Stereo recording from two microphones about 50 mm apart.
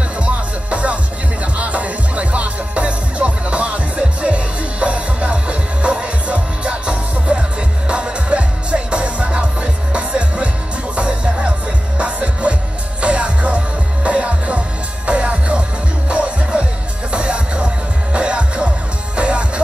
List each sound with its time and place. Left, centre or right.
0.2 s music: right